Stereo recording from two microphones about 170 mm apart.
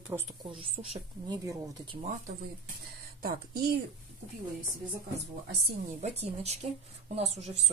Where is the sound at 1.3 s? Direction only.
20° right (ahead or behind).